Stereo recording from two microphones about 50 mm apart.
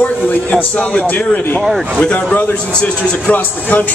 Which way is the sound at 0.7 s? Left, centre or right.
Left.